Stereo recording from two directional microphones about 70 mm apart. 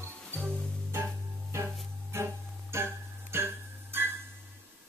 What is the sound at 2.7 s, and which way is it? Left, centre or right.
Music, right.